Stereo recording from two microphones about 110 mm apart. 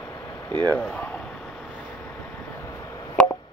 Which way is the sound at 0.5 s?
15° left (ahead or behind).